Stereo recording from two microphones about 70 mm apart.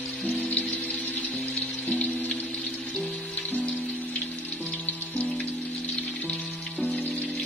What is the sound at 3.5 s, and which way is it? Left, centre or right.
Music, left.